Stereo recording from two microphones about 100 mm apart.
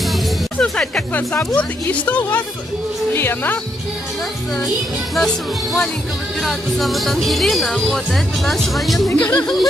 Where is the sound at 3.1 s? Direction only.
20° left (ahead or behind).